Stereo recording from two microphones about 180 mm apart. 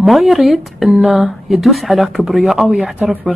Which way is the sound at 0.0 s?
Centre (ahead or behind).